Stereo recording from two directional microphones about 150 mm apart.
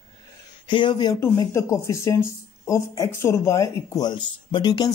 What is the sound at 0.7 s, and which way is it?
Speech, 30° left (ahead or behind).